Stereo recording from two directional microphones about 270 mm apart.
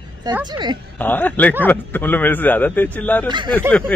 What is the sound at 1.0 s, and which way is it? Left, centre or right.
A man's voice, centre.